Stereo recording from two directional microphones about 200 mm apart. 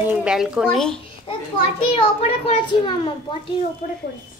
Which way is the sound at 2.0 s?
30° left (ahead or behind).